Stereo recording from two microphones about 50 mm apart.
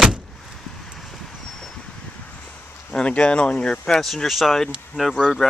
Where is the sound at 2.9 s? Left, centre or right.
Left.